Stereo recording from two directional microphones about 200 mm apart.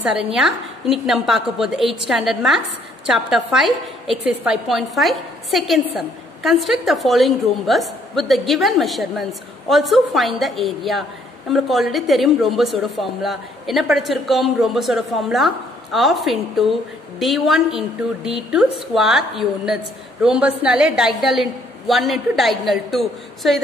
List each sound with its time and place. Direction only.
0.0 s a woman's voice: 5° right (ahead or behind)